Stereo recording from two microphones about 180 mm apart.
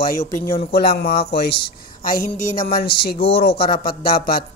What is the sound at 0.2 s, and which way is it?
Speech, 15° left (ahead or behind).